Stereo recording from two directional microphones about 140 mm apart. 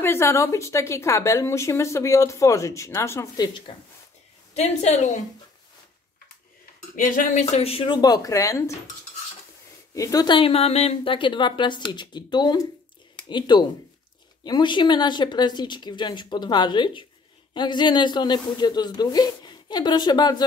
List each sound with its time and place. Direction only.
0.0 s speech: 20° left (ahead or behind)
4.6 s a woman's voice: 60° left (ahead or behind)
7.0 s a man's voice: 60° left (ahead or behind); by 8.7 s 20° left (ahead or behind)
9.9 s speech: 25° left (ahead or behind)
10.3 s a man's voice: 45° left (ahead or behind)